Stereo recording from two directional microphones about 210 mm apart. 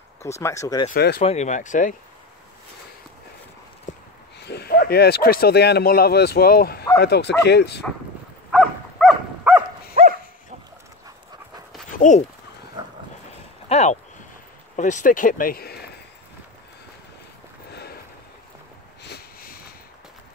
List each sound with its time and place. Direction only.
0.4 s speech: 15° left (ahead or behind)
0.9 s speech: 50° left (ahead or behind)
1.2 s speech: 30° left (ahead or behind)
4.4 s speech: 50° left (ahead or behind)
8.5 s dog: centre (ahead or behind)
13.7 s speech: 30° left (ahead or behind); by 15.9 s 50° left (ahead or behind)
17.6 s a sound: 50° left (ahead or behind)
19.0 s a sound: 45° left (ahead or behind)